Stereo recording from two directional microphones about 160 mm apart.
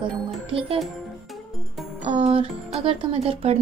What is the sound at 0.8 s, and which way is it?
Music, centre (ahead or behind).